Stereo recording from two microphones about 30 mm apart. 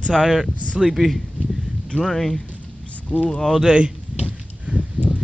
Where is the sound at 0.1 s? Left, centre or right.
Centre.